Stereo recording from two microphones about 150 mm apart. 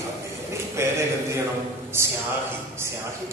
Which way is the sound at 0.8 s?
20° right (ahead or behind).